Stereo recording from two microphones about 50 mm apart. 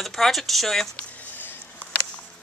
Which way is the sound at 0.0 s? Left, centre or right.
Centre.